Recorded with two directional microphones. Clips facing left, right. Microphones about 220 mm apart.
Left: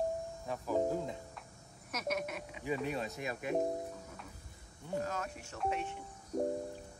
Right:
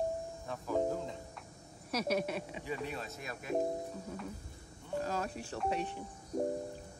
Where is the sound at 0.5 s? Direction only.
10° left (ahead or behind).